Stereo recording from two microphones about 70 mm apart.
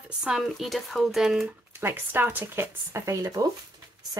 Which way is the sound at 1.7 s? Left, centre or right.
Right.